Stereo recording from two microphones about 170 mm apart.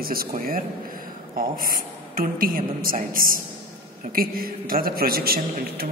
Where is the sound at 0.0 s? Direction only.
60° right (ahead or behind).